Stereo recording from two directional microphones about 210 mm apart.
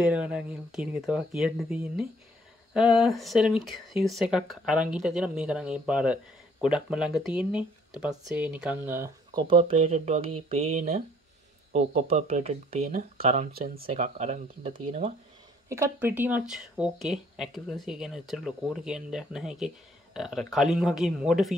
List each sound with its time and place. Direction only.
0.0 s speech: 5° right (ahead or behind); by 13.5 s 35° right (ahead or behind)
13.5 s speech: 45° right (ahead or behind)
15.7 s speech: 10° right (ahead or behind)